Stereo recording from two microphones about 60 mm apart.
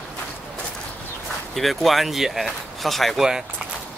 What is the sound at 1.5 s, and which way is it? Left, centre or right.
Speech, centre.